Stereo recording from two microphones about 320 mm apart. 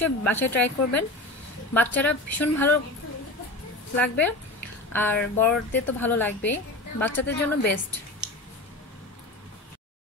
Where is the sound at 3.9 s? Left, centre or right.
Centre.